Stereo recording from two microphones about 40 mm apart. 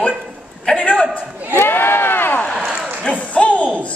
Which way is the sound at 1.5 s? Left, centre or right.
Left.